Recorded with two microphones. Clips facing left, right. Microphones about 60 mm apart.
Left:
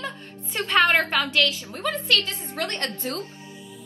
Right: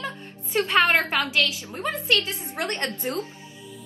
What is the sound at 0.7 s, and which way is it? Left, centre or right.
Music, centre.